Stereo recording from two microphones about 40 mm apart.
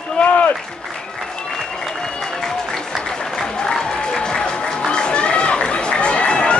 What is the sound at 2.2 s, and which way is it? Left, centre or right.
Applause, centre.